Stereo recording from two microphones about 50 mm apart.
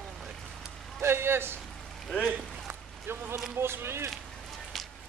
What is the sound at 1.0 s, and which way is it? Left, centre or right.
Speech, right.